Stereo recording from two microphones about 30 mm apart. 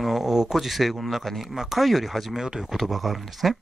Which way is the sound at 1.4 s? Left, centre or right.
Centre.